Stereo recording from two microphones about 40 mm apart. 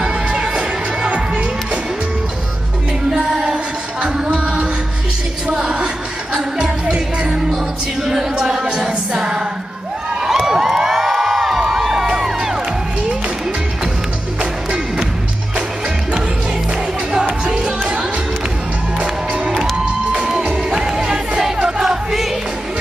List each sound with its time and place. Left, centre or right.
0.6 s music: right
3.2 s music: right
7.3 s music: centre
17.5 s music: centre
18.9 s music: right
20.7 s music: centre
21.8 s music: centre